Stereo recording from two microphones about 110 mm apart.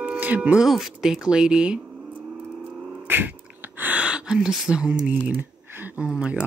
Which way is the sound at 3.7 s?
15° right (ahead or behind).